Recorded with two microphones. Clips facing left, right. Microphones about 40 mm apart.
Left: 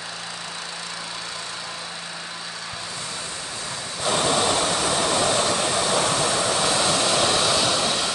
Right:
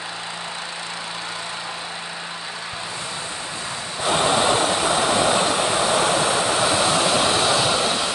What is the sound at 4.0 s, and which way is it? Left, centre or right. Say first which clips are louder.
Vehicle: right 3 dB; centre.